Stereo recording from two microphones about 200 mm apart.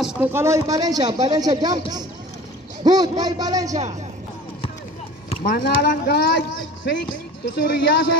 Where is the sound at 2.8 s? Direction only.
20° right (ahead or behind).